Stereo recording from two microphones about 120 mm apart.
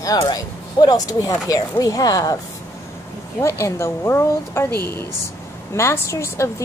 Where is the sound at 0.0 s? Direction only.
30° left (ahead or behind).